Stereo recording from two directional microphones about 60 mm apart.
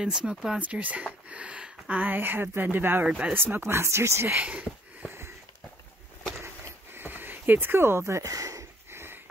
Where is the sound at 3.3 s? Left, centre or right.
Right.